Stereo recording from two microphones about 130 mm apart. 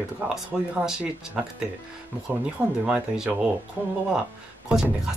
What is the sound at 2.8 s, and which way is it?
Speech, 5° right (ahead or behind).